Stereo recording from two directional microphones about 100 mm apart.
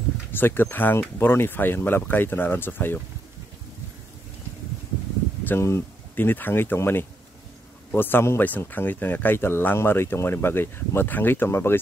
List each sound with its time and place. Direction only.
0.3 s speech: 20° left (ahead or behind)
5.4 s speech: 25° left (ahead or behind)